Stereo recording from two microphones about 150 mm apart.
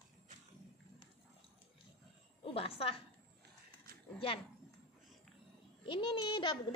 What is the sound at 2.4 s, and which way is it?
Speech, 40° left (ahead or behind).